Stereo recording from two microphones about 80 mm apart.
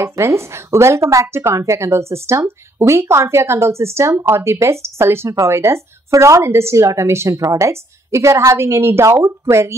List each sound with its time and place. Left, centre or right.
0.0 s speech: right